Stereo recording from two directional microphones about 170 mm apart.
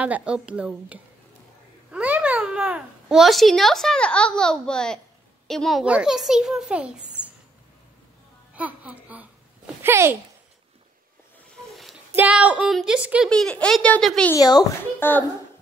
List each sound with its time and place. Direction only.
0.0 s a child's voice: 5° right (ahead or behind)
8.5 s speech: 10° right (ahead or behind)
12.2 s speech: 10° right (ahead or behind)
13.3 s a child's voice: 5° left (ahead or behind)
14.3 s speech: 20° left (ahead or behind)
15.0 s a child's voice: 10° left (ahead or behind)